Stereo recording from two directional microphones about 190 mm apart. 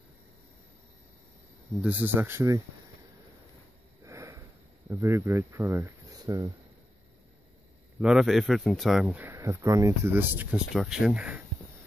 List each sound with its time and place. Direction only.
1.8 s speech: 10° right (ahead or behind)
4.0 s a sound: 15° right (ahead or behind)
4.8 s speech: 15° right (ahead or behind)
8.0 s speech: centre (ahead or behind)